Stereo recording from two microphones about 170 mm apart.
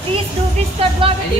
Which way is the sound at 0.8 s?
35° right (ahead or behind).